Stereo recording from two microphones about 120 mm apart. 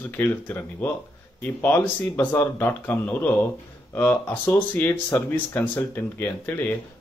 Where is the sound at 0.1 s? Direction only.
15° left (ahead or behind).